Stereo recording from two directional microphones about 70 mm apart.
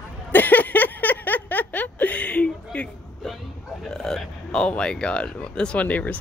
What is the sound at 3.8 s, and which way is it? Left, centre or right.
Speech, centre.